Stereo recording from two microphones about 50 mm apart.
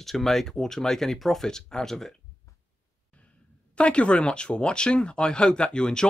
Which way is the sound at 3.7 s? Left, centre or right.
Left.